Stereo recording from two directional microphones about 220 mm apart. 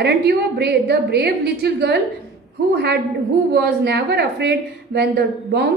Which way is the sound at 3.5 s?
50° right (ahead or behind).